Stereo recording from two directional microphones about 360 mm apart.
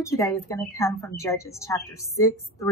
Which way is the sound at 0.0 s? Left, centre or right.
Centre.